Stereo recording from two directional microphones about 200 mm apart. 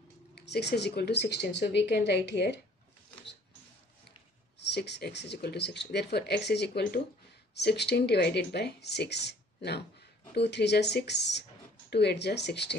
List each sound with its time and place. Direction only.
0.3 s speech: 55° left (ahead or behind)
4.6 s speech: 55° left (ahead or behind)